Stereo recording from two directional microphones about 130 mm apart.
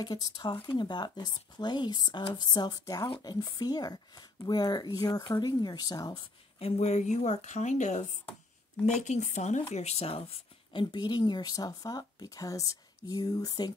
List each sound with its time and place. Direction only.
0.0 s speech: 35° left (ahead or behind)
6.6 s a woman's voice: 60° left (ahead or behind); by 13.7 s 30° left (ahead or behind)